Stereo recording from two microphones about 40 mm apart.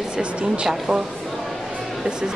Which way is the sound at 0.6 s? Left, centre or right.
Centre.